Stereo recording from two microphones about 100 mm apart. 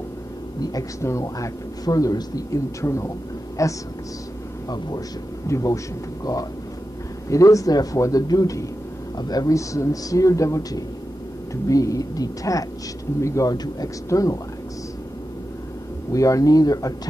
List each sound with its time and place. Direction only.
0.6 s a man's voice: 35° left (ahead or behind)
7.2 s a man's voice: 35° left (ahead or behind)
16.1 s a man's voice: 35° left (ahead or behind)